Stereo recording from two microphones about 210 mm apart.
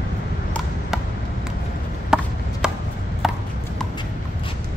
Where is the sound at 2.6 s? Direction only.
5° right (ahead or behind).